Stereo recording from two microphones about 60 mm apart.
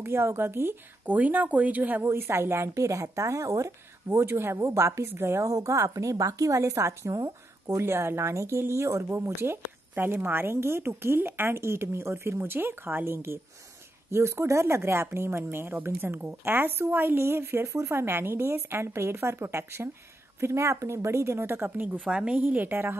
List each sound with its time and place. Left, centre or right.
0.0 s a woman's voice: right
1.0 s speech: right
2.0 s a woman's voice: right
5.5 s a woman's voice: right
17.6 s speech: right
17.9 s a woman's voice: right
22.0 s a woman's voice: centre
22.4 s a woman's voice: right